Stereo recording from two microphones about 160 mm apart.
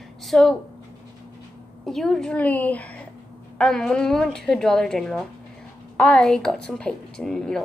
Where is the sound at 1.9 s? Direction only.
Centre (ahead or behind).